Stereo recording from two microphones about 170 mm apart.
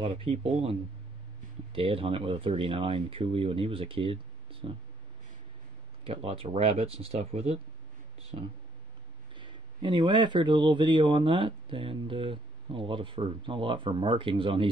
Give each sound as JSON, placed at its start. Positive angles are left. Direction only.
{"t": 0.1, "sound": "speech", "side_deg": -35}
{"t": 6.0, "sound": "speech", "side_deg": -30}